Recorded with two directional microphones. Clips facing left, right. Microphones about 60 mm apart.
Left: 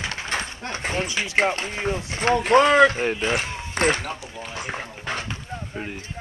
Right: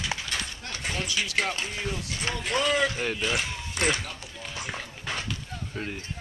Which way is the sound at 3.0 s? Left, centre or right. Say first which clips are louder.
Left 5 dB; left.